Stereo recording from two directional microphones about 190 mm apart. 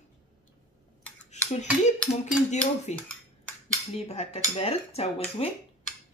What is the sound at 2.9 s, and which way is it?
Speech, 35° left (ahead or behind).